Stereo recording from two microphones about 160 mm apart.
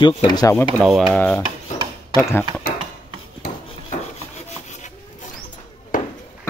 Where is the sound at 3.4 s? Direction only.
65° left (ahead or behind).